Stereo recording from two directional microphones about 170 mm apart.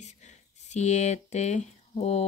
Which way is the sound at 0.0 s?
45° left (ahead or behind).